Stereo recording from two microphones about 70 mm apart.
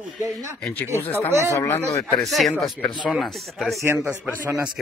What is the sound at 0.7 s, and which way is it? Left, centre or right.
Speech, left.